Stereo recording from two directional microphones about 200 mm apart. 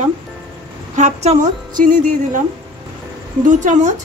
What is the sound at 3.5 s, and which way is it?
Speech, 40° right (ahead or behind).